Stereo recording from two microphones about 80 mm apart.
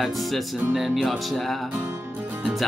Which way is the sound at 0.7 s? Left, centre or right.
Centre.